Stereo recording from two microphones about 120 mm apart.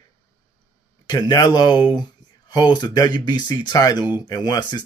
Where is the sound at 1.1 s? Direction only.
35° left (ahead or behind).